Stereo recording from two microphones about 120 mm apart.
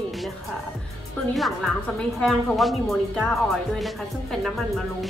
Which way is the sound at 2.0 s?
5° left (ahead or behind).